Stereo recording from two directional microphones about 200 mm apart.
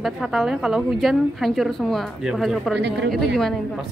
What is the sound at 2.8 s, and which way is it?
Speech, 60° right (ahead or behind).